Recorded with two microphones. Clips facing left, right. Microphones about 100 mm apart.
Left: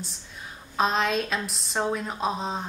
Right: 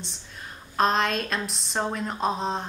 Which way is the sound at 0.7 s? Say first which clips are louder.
Right 1 dB; centre (ahead or behind).